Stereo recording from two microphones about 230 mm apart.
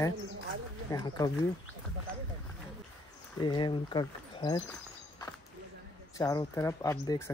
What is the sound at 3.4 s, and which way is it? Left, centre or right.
Speech, centre.